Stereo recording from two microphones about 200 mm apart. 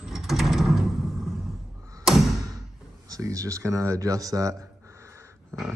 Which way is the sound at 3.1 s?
15° right (ahead or behind).